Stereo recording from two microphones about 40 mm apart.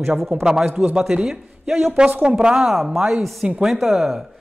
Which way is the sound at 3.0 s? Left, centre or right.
Centre.